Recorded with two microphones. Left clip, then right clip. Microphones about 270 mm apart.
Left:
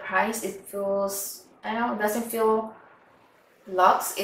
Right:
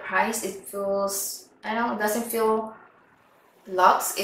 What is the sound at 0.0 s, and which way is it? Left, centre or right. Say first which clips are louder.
Speech: right 1 dB; centre.